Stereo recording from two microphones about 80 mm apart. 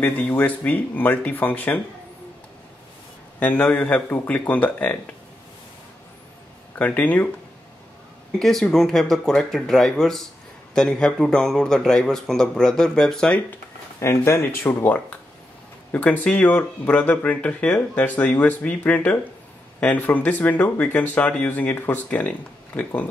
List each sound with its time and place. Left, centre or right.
0.0 s speech: left
3.3 s speech: centre
6.7 s speech: left
8.4 s speech: centre
13.9 s speech: left; by 22.9 s centre